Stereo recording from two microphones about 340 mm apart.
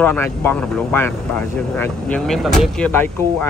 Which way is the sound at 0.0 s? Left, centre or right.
Centre.